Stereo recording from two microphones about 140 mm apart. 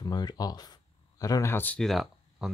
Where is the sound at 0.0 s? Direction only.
30° left (ahead or behind).